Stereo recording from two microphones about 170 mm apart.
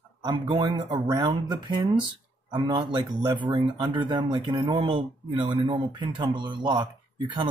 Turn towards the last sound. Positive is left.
turn(degrees=-25)  # may be behind; listen again after turning